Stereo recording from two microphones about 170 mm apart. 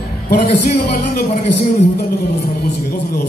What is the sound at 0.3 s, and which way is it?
Speech, 70° left (ahead or behind).